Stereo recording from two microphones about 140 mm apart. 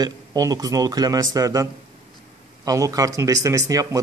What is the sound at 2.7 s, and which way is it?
A man's voice, 25° right (ahead or behind).